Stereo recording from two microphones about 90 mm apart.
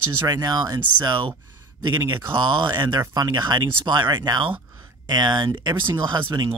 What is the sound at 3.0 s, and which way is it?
Speech, 40° right (ahead or behind).